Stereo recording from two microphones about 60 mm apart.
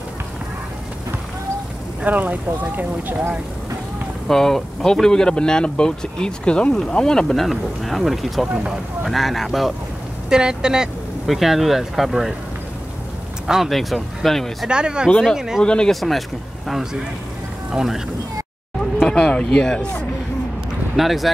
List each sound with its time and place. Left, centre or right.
2.0 s speech: right
4.3 s speech: centre
10.3 s speech: centre
13.5 s speech: centre
14.7 s speech: centre
15.6 s speech: centre
15.9 s speech: centre
19.0 s speech: centre
20.9 s speech: centre